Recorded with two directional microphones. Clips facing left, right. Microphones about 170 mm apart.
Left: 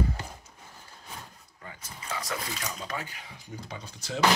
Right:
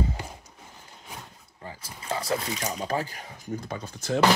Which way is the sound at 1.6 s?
30° right (ahead or behind).